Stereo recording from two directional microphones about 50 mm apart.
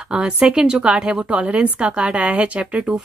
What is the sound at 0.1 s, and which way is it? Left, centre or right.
Speech, centre.